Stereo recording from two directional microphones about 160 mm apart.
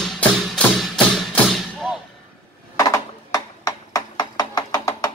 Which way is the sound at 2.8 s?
20° left (ahead or behind).